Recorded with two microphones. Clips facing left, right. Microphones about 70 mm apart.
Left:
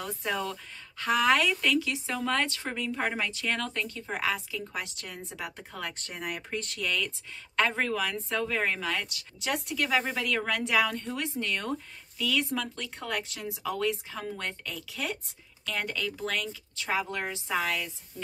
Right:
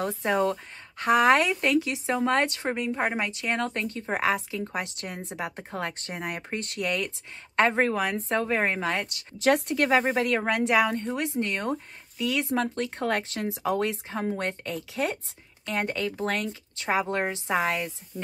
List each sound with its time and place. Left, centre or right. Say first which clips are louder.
0.0 s a woman's voice: right 7 dB; right
9.4 s a woman's voice: right 8 dB; right
12.5 s a woman's voice: right 7 dB; right